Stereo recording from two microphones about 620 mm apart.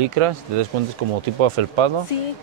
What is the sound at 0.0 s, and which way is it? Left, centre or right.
Speech, right.